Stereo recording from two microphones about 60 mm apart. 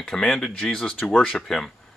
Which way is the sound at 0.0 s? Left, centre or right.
Centre.